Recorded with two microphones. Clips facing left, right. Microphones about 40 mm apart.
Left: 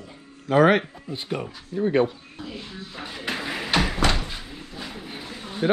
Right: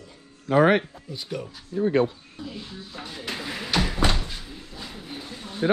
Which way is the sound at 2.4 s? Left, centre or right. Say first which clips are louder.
Left 1 dB; left.